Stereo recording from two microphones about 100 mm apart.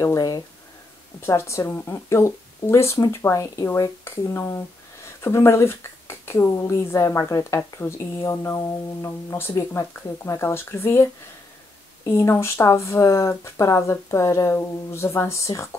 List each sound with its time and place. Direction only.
0.0 s speech: 40° left (ahead or behind)